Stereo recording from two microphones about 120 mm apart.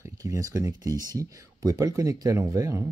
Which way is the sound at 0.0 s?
25° right (ahead or behind).